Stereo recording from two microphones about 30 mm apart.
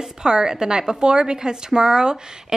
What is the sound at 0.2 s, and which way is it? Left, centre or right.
A woman's voice, right.